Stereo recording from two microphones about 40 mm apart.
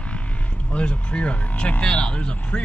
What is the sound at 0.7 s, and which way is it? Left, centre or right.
Speech, left.